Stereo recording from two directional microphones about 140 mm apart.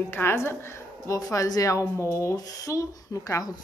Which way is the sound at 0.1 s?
15° left (ahead or behind).